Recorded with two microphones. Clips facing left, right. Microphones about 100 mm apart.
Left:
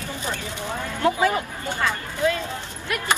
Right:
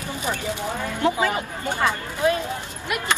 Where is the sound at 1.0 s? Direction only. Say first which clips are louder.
Left 1 dB; 20° right (ahead or behind).